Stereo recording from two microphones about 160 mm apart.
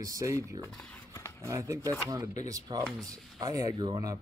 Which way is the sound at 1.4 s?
20° right (ahead or behind).